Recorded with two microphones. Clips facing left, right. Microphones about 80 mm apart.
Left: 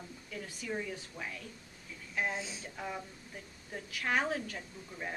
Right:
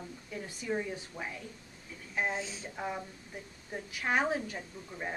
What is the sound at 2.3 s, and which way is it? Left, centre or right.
Speech, centre.